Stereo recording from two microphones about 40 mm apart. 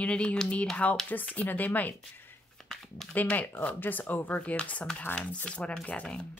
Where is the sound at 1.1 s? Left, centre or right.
Left.